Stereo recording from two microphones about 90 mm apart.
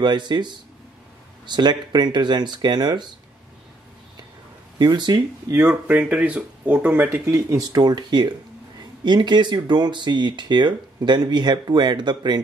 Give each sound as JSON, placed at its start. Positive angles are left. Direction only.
{"t": 0.0, "sound": "speech", "side_deg": -55}
{"t": 4.7, "sound": "speech", "side_deg": -55}
{"t": 5.9, "sound": "speech", "side_deg": -15}
{"t": 7.2, "sound": "speech", "side_deg": -40}